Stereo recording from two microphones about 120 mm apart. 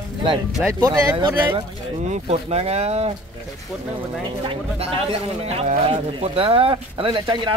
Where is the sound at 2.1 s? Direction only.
60° right (ahead or behind).